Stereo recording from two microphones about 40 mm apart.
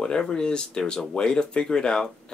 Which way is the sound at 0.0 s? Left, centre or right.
Centre.